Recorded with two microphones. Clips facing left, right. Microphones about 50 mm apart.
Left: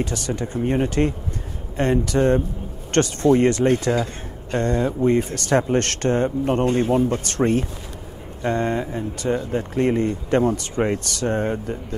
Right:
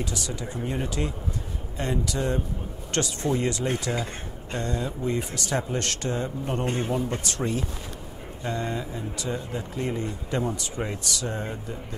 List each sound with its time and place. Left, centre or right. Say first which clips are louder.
0.0 s speech: left 7 dB; left